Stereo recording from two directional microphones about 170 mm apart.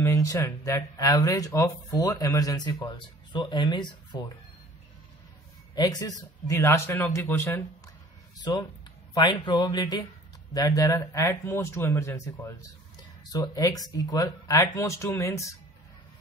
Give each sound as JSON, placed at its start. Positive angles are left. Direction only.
{"t": 0.0, "sound": "speech", "side_deg": 20}
{"t": 5.8, "sound": "speech", "side_deg": 20}
{"t": 8.4, "sound": "speech", "side_deg": 25}